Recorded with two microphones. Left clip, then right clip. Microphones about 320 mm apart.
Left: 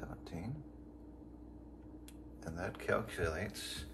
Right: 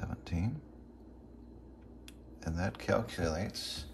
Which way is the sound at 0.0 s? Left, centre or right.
Right.